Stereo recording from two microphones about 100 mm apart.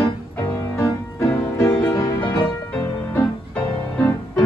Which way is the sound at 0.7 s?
30° left (ahead or behind).